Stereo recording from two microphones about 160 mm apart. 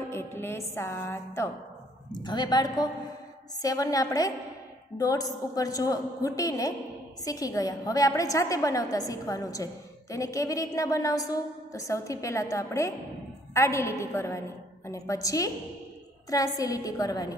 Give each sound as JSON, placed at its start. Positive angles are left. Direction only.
{"t": 0.1, "sound": "music", "side_deg": 15}
{"t": 2.2, "sound": "a woman's voice", "side_deg": 25}